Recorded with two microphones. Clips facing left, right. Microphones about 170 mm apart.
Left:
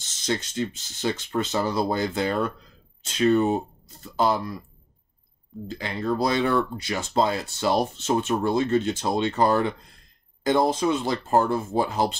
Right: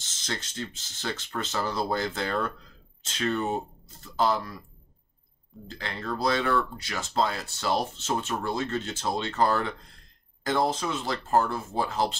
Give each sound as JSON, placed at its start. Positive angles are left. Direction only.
{"t": 0.3, "sound": "speech", "side_deg": 15}
{"t": 5.8, "sound": "speech", "side_deg": 15}